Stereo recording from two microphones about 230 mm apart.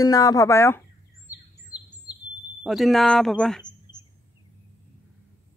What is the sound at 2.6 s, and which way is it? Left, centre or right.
Speech, centre.